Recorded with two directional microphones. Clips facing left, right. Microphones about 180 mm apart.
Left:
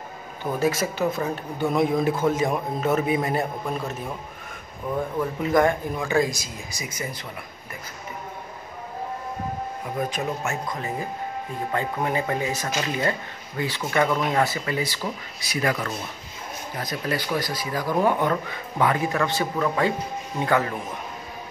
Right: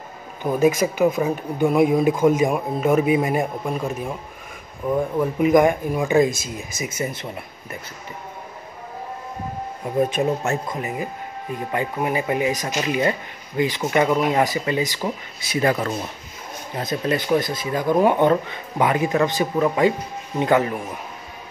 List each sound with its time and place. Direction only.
0.4 s speech: 15° right (ahead or behind)
4.9 s speech: 15° right (ahead or behind)
9.9 s speech: 25° right (ahead or behind)
11.7 s speech: 10° right (ahead or behind)